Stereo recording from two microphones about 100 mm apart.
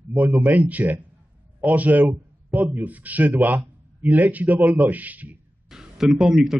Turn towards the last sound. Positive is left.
turn(degrees=-5)  # may be behind; listen again after turning